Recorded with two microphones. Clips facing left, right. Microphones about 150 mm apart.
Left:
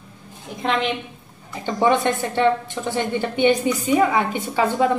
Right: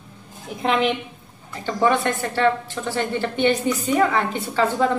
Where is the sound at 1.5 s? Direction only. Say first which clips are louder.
Left 1 dB; 20° left (ahead or behind).